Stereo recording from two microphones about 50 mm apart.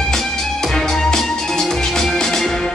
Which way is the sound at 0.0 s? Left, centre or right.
Centre.